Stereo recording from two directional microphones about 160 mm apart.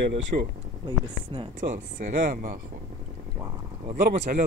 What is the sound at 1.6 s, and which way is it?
Speech, 55° right (ahead or behind).